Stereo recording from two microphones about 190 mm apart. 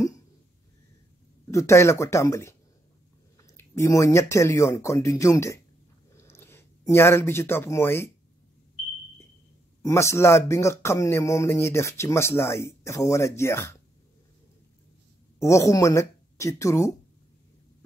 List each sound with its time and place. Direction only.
1.5 s speech: 15° left (ahead or behind)
9.8 s speech: 15° left (ahead or behind)
15.3 s speech: 15° left (ahead or behind)